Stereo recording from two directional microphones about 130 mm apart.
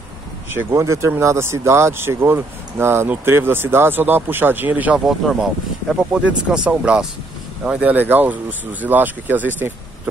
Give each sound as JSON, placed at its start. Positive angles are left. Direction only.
{"t": 0.5, "sound": "speech", "side_deg": -20}
{"t": 5.0, "sound": "speech", "side_deg": 0}